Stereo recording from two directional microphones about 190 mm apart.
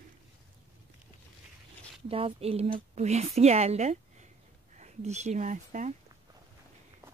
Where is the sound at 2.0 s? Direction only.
30° right (ahead or behind).